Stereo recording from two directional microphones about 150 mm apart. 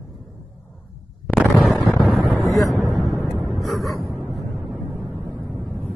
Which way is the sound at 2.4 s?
Centre (ahead or behind).